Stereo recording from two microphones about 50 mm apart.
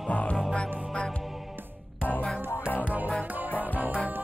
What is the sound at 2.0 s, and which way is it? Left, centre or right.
Music, left.